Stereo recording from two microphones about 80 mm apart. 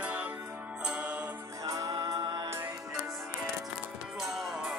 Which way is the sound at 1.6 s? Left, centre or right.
Right.